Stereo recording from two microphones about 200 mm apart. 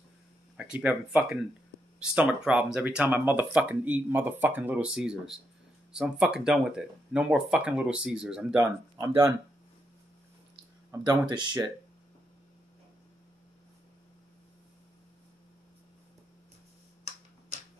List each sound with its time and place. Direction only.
0.6 s speech: 5° right (ahead or behind)
8.5 s speech: 20° right (ahead or behind)
10.9 s speech: 20° right (ahead or behind)